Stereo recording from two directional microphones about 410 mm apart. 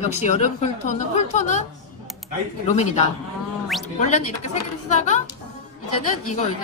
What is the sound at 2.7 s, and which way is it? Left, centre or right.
A woman's voice, centre.